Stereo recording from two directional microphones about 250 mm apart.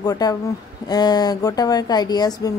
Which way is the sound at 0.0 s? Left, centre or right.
Centre.